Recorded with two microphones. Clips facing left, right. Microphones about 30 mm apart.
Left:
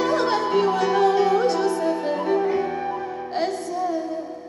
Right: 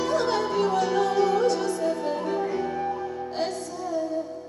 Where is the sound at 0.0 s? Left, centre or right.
Left.